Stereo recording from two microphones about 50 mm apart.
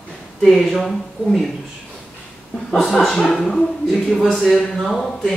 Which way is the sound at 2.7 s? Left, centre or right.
Centre.